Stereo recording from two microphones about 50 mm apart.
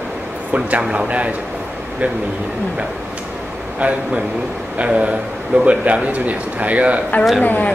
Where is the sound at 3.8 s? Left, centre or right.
Right.